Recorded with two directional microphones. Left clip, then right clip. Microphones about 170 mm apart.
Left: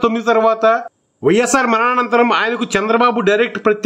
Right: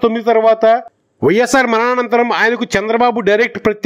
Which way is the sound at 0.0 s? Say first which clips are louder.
Right 2 dB; 25° right (ahead or behind).